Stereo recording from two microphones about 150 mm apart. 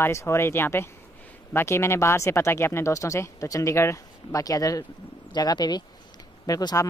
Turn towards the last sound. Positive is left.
turn(degrees=25)  # may be behind; listen again after turning